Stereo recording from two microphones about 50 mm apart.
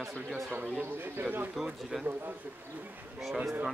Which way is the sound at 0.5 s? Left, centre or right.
Right.